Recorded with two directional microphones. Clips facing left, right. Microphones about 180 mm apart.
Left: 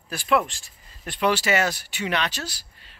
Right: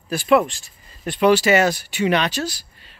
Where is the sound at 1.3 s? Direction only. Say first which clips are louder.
Right 7 dB; 15° right (ahead or behind).